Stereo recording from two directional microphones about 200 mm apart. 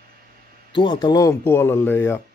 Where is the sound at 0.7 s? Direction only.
25° left (ahead or behind).